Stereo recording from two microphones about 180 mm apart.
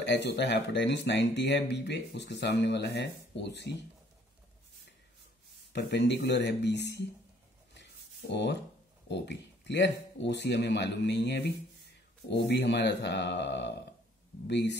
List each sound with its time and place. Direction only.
0.0 s speech: 75° left (ahead or behind)
5.7 s speech: 70° left (ahead or behind)
8.3 s speech: 75° left (ahead or behind)